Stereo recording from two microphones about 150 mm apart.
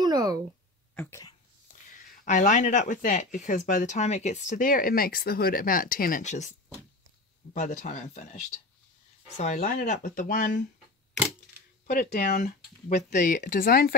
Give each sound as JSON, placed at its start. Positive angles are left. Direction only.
{"t": 0.0, "sound": "a sound", "side_deg": -25}
{"t": 0.9, "sound": "speech", "side_deg": 20}
{"t": 2.2, "sound": "speech", "side_deg": 55}
{"t": 7.5, "sound": "speech", "side_deg": 55}
{"t": 11.9, "sound": "speech", "side_deg": 90}
{"t": 12.4, "sound": "speech", "side_deg": 50}